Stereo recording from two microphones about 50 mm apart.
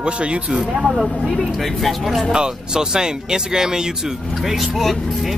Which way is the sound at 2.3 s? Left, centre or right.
Centre.